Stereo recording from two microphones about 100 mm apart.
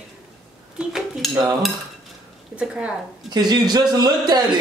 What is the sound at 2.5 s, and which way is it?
Speech, 10° right (ahead or behind).